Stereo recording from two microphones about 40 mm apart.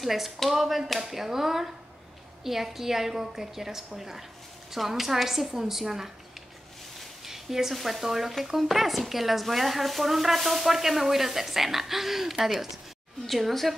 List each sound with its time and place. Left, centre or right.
0.0 s a woman's voice: centre
7.2 s speech: centre